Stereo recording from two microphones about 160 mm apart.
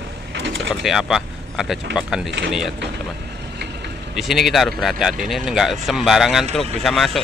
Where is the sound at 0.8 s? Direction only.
Centre (ahead or behind).